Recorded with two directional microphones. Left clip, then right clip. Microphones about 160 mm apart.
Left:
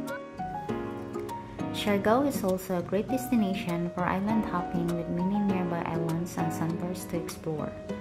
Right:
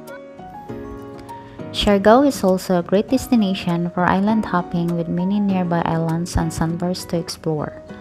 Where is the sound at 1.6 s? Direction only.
45° right (ahead or behind).